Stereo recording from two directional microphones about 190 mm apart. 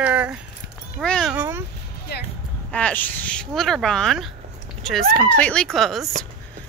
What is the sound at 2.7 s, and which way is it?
Speech, 5° left (ahead or behind).